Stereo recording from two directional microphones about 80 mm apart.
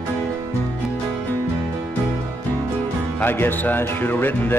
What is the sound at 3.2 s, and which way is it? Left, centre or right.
Speech, left.